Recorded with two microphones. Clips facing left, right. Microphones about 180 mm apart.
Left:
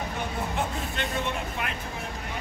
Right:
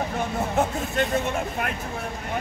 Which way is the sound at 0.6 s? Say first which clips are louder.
Right 10 dB; 45° right (ahead or behind).